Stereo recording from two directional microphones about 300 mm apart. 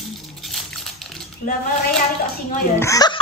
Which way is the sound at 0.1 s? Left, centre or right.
Centre.